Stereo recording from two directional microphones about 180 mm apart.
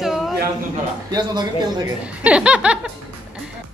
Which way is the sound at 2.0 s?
5° right (ahead or behind).